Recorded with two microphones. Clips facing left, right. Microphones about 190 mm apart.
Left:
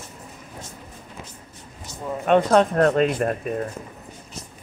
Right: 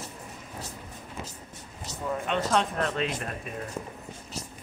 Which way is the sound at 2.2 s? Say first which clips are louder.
Left 11 dB; 50° left (ahead or behind).